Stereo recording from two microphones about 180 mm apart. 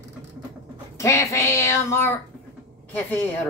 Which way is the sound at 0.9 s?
15° left (ahead or behind).